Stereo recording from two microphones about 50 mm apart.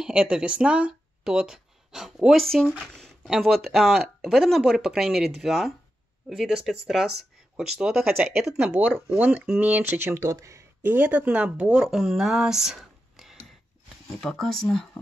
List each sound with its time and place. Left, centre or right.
0.0 s speech: centre
8.7 s speech: right
10.1 s speech: right
10.8 s speech: right
11.1 s speech: right
11.9 s a sound: centre
14.2 s speech: centre